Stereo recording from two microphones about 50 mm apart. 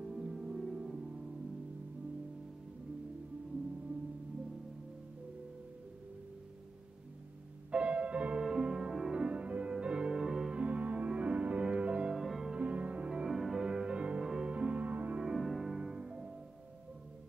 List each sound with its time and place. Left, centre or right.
0.0 s music: centre
7.7 s music: right
10.5 s music: right
12.2 s music: centre
12.5 s music: right
13.2 s music: centre
13.7 s music: centre
14.2 s music: centre
14.5 s music: right
15.3 s music: centre
15.8 s music: right